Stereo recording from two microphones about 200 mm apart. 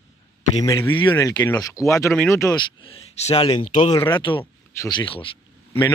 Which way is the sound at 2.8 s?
30° left (ahead or behind).